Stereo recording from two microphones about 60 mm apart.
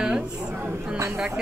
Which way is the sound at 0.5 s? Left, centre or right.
Right.